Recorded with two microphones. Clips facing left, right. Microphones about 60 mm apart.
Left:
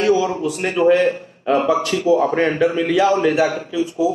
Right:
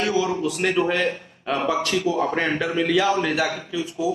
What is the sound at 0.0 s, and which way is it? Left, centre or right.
A man's voice, left.